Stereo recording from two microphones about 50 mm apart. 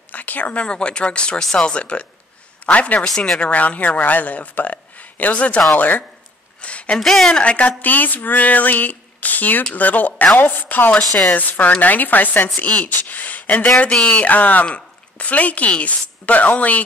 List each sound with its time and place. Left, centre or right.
0.1 s speech: left
6.6 s a woman's voice: left
7.0 s a woman's voice: centre
7.3 s speech: left
7.8 s speech: left
11.0 s a woman's voice: centre
11.3 s speech: left
12.8 s a sound: left
13.9 s a woman's voice: centre
14.2 s speech: left